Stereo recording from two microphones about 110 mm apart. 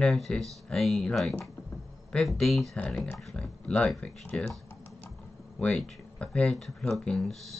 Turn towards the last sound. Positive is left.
turn(degrees=5)  # may be behind; listen again after turning